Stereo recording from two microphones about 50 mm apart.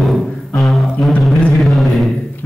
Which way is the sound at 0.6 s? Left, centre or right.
Centre.